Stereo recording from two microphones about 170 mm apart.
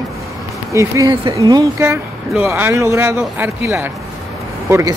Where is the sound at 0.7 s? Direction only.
20° right (ahead or behind).